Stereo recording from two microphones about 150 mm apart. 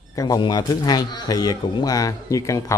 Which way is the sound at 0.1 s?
25° left (ahead or behind).